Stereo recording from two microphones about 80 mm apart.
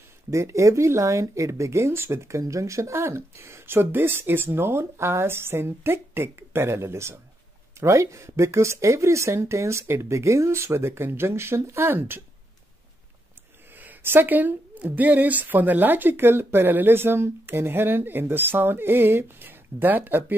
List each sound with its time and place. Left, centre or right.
0.3 s speech: right
13.7 s a woman's voice: right